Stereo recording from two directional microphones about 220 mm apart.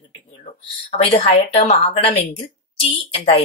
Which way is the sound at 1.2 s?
25° left (ahead or behind).